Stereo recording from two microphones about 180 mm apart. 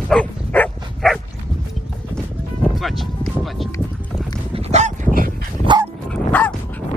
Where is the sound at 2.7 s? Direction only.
Centre (ahead or behind).